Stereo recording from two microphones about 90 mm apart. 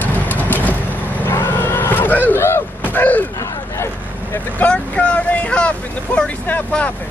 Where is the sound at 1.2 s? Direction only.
25° left (ahead or behind).